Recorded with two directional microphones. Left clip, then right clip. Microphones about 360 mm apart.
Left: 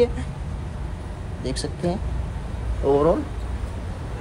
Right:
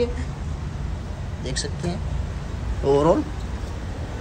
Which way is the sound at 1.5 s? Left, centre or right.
Centre.